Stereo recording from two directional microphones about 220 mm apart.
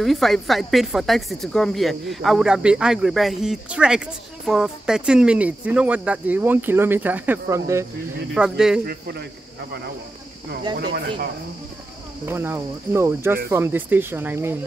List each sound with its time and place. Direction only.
0.0 s a woman's voice: centre (ahead or behind)
8.4 s a woman's voice: 5° right (ahead or behind)
10.8 s speech: 50° right (ahead or behind)
12.3 s speech: 10° right (ahead or behind)